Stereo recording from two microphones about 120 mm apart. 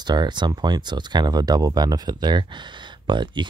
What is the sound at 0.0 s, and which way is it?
Speech, 35° right (ahead or behind).